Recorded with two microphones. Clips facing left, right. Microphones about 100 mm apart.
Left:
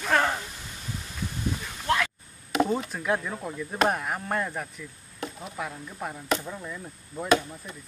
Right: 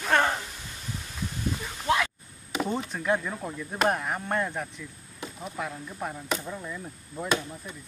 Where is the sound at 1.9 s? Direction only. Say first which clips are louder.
Even; 5° right (ahead or behind).